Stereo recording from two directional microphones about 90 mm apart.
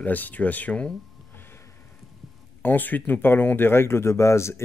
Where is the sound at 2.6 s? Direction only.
20° left (ahead or behind).